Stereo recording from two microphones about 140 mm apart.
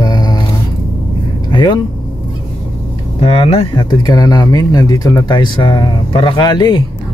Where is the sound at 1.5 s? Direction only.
35° left (ahead or behind).